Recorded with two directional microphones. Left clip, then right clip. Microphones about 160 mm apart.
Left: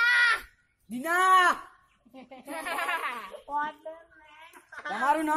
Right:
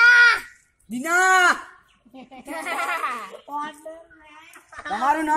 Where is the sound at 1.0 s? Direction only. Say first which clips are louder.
Right 4 dB; centre (ahead or behind).